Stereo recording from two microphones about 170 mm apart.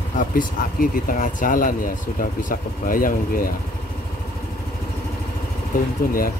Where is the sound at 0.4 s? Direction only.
55° left (ahead or behind).